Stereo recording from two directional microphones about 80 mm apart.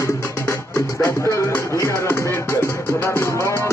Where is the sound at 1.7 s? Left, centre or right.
Left.